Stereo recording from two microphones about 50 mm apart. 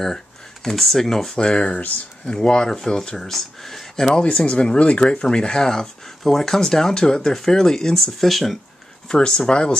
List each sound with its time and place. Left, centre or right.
0.0 s speech: centre
1.3 s speech: centre
2.2 s speech: centre
9.1 s speech: centre